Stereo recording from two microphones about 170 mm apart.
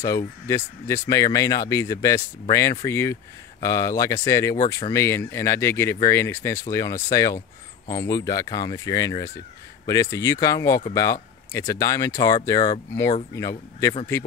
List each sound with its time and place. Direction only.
0.5 s speech: 15° left (ahead or behind)